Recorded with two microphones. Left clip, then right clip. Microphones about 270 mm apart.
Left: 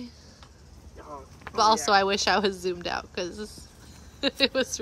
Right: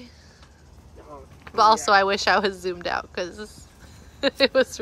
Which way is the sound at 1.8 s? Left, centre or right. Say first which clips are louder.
Right 4 dB; centre.